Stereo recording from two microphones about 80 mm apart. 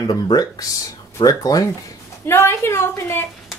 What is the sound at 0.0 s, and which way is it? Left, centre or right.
Speech, left.